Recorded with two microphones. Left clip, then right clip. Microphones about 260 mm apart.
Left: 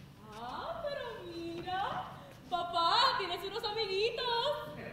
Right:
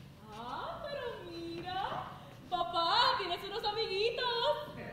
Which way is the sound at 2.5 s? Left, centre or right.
Centre.